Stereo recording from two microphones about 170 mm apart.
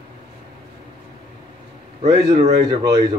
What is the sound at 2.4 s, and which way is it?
Speech, 20° right (ahead or behind).